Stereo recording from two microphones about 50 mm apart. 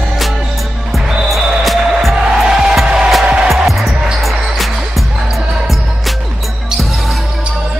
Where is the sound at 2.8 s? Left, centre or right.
Centre.